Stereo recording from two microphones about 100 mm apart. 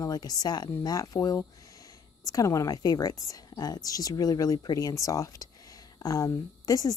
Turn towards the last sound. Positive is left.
turn(degrees=35)  # may be behind; listen again after turning